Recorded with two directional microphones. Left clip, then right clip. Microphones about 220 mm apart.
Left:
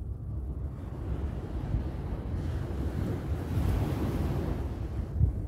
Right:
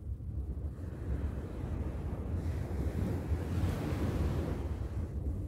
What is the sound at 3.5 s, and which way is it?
Waves, 45° left (ahead or behind).